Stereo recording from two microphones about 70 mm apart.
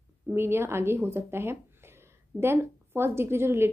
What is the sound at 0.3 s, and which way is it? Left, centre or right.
A woman's voice, right.